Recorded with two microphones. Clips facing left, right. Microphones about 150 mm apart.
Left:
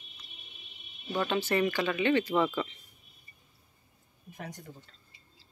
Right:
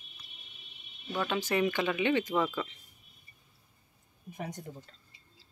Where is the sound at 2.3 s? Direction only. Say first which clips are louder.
Left 2 dB; centre (ahead or behind).